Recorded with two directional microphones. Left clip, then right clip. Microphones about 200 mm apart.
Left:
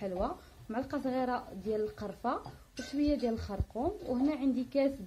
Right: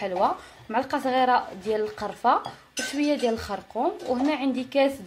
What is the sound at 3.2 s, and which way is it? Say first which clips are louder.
Speech: right 9 dB; 5° right (ahead or behind).